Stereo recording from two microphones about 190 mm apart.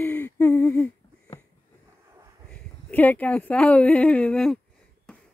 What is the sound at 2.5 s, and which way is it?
Speech, 10° left (ahead or behind).